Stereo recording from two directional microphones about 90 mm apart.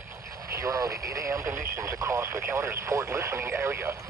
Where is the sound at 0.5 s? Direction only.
35° right (ahead or behind).